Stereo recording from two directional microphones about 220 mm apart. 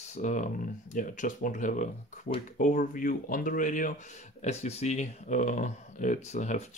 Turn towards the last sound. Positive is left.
turn(degrees=30)  # may be behind; listen again after turning